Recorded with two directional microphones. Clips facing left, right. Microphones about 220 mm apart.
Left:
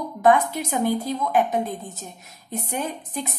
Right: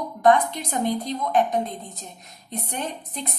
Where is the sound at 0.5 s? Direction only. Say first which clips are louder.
Left 2 dB; 5° left (ahead or behind).